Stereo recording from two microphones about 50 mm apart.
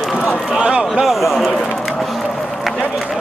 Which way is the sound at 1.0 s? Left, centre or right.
Centre.